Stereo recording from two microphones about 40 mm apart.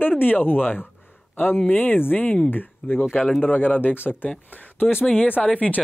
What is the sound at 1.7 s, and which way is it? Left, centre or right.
Speech, left.